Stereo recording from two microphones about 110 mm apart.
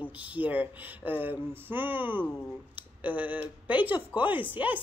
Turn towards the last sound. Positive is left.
turn(degrees=-15)  # may be behind; listen again after turning